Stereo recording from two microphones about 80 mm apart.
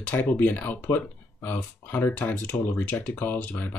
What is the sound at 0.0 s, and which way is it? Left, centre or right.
Speech, left.